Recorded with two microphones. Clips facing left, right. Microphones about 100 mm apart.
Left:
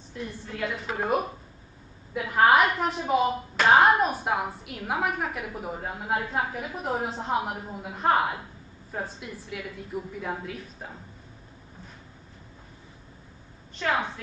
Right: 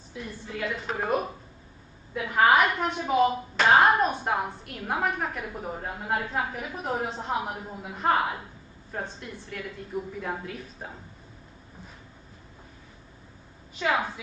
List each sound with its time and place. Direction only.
0.1 s speech: centre (ahead or behind)
13.7 s speech: 5° right (ahead or behind)